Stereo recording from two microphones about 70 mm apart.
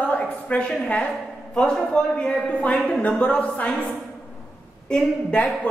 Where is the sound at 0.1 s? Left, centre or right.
Centre.